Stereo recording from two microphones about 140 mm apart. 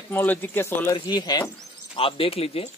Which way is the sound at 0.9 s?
30° left (ahead or behind).